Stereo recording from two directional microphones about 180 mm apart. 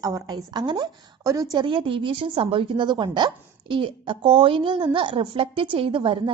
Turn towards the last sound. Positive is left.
turn(degrees=-30)  # may be behind; listen again after turning